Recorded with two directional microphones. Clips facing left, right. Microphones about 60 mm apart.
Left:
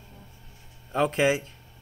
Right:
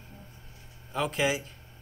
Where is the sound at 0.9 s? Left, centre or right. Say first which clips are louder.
Left 5 dB; left.